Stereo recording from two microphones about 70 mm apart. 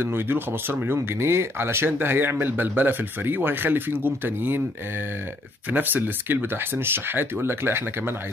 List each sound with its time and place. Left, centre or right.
0.0 s speech: right
5.7 s speech: right